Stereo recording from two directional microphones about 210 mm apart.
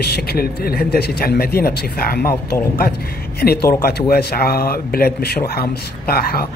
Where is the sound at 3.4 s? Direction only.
45° left (ahead or behind).